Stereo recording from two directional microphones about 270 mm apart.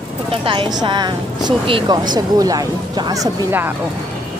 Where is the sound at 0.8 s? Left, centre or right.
Centre.